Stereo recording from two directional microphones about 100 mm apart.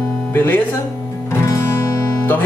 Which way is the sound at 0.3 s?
20° left (ahead or behind).